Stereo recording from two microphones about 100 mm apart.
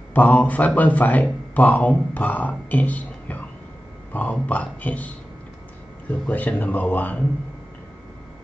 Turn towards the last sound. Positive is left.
turn(degrees=15)  # may be behind; listen again after turning